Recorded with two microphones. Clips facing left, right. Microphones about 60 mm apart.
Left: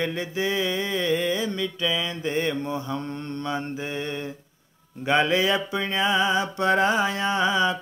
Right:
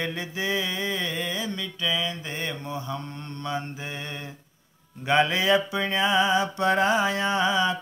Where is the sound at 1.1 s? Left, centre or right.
Centre.